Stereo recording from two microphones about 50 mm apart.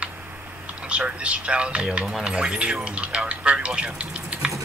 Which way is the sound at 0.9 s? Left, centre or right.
Right.